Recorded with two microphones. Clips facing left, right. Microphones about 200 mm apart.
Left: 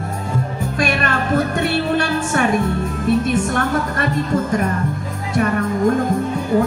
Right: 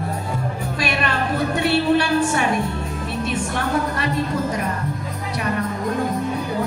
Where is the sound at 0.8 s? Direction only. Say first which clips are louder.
Left 3 dB; 50° left (ahead or behind).